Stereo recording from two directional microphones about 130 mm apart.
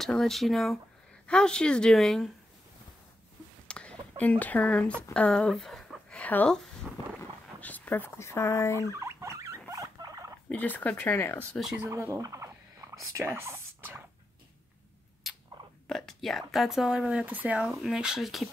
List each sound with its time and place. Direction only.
0.0 s speech: 5° left (ahead or behind)
3.6 s a sound: 10° left (ahead or behind)
4.2 s speech: 10° left (ahead or behind)
9.0 s rodents: 20° right (ahead or behind)
10.5 s speech: 15° left (ahead or behind)
11.9 s rodents: 25° right (ahead or behind)
15.2 s a sound: centre (ahead or behind)
15.9 s speech: centre (ahead or behind)